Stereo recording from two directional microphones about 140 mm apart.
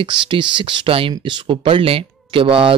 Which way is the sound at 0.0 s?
35° right (ahead or behind).